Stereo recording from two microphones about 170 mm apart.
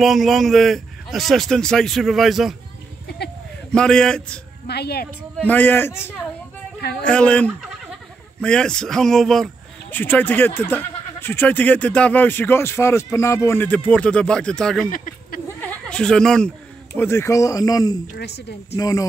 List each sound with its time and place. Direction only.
0.0 s a man's voice: centre (ahead or behind)
3.7 s a man's voice: 5° left (ahead or behind)
4.6 s a woman's voice: 70° left (ahead or behind)
5.5 s speech: 10° left (ahead or behind)
18.0 s a woman's voice: 70° left (ahead or behind)
18.8 s speech: 20° left (ahead or behind)